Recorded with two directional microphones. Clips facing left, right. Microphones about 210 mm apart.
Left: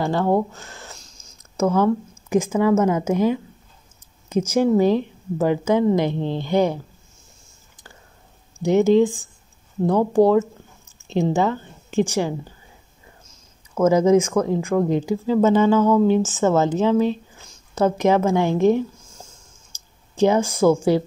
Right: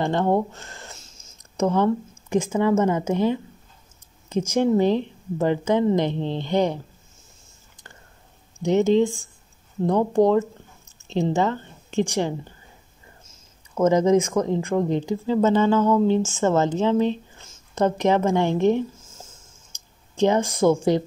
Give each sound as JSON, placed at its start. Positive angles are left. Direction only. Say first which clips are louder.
{"t": 0.0, "sound": "a sound", "louder": "left 1 dB", "side_deg": 5}
{"t": 2.2, "sound": "a woman's voice", "louder": "left 2 dB", "side_deg": 5}
{"t": 4.6, "sound": "a woman's voice", "louder": "left 2 dB", "side_deg": 10}
{"t": 8.6, "sound": "a woman's voice", "louder": "left 3 dB", "side_deg": 10}
{"t": 13.8, "sound": "a woman's voice", "louder": "left 2 dB", "side_deg": 5}
{"t": 19.0, "sound": "a sound", "louder": "left 1 dB", "side_deg": -5}
{"t": 20.2, "sound": "speech", "louder": "left 2 dB", "side_deg": 5}